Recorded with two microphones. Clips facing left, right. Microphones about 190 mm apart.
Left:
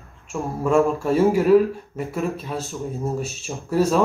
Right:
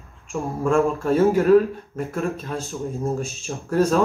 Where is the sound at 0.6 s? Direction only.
10° left (ahead or behind).